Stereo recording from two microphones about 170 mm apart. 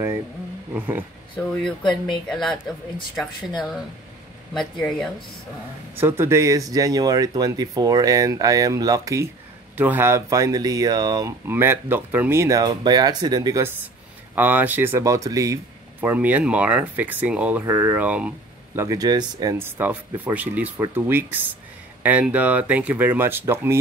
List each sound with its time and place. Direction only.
0.7 s speech: 10° right (ahead or behind)
2.2 s speech: centre (ahead or behind)
4.6 s speech: 5° left (ahead or behind)
5.9 s speech: 15° right (ahead or behind)
18.8 s speech: 20° right (ahead or behind)